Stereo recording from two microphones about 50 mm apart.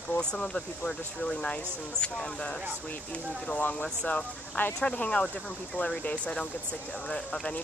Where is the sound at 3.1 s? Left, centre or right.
Left.